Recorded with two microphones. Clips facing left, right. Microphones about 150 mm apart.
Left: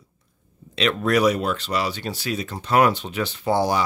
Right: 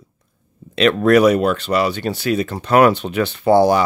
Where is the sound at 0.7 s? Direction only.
60° right (ahead or behind).